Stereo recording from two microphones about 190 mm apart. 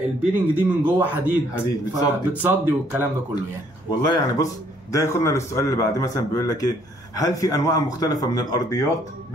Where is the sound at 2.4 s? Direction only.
10° right (ahead or behind).